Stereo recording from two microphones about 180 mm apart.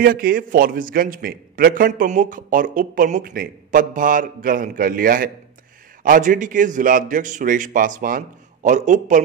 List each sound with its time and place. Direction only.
0.0 s a man's voice: 55° right (ahead or behind)